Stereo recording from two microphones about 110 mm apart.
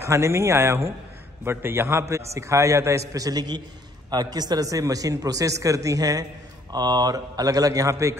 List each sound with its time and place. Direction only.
0.0 s a man's voice: 25° right (ahead or behind)